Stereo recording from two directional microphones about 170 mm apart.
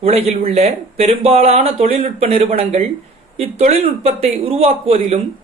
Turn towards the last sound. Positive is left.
turn(degrees=-35)  # may be behind; listen again after turning